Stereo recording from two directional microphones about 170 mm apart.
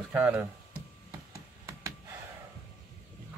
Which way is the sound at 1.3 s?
20° right (ahead or behind).